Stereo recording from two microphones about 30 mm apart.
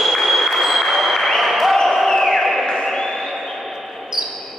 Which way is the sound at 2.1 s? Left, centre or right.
Centre.